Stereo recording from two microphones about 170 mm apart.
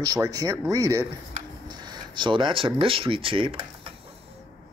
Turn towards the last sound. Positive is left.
turn(degrees=-30)  # may be behind; listen again after turning